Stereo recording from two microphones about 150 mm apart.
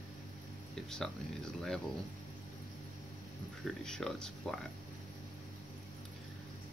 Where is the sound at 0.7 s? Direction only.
5° left (ahead or behind).